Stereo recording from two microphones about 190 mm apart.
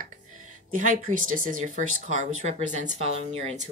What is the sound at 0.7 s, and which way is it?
Speech, 45° right (ahead or behind).